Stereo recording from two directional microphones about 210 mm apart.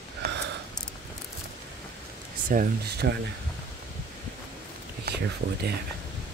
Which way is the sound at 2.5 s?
45° right (ahead or behind).